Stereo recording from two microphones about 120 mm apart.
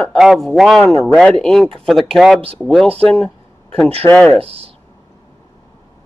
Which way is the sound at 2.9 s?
10° left (ahead or behind).